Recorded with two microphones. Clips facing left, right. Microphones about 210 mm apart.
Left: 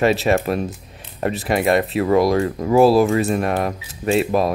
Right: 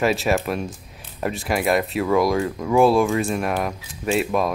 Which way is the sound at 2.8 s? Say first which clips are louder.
Left 3 dB; 35° left (ahead or behind).